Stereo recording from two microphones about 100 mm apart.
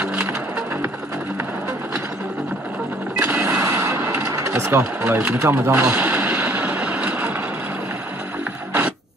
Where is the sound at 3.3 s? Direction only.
30° right (ahead or behind).